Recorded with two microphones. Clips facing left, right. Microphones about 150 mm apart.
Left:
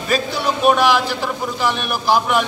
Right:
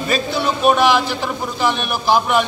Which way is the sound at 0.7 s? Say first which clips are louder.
Even; 5° left (ahead or behind).